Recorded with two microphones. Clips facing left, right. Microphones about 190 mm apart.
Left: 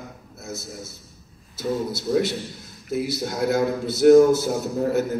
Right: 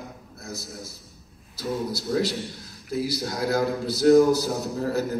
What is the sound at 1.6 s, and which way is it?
A man's voice, 25° left (ahead or behind).